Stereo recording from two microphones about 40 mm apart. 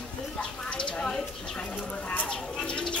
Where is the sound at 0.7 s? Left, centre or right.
Left.